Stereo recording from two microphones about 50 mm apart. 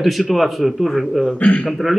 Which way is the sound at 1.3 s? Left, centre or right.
Left.